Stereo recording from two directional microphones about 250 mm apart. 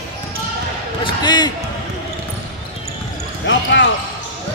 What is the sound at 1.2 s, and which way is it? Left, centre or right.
Basketball bounce, centre.